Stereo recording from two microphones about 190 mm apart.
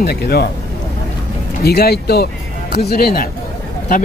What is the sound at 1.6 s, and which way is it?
Speech, 55° left (ahead or behind).